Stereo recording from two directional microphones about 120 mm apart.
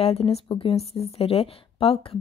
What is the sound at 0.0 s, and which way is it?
A woman's voice, 55° left (ahead or behind).